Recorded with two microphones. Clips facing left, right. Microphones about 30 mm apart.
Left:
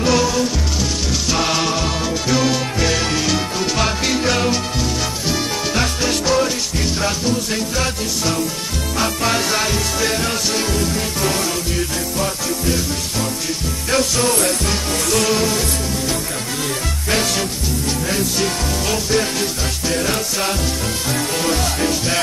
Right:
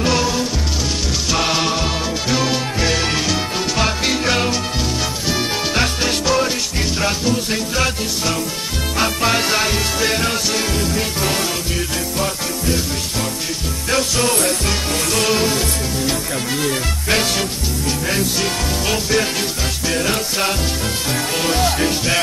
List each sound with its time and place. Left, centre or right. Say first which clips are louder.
0.0 s music: left 1 dB; centre
7.7 s music: right 1 dB; centre
8.9 s music: right 1 dB; centre
13.8 s music: even; centre
15.2 s music: right 3 dB; centre
17.1 s music: right 1 dB; centre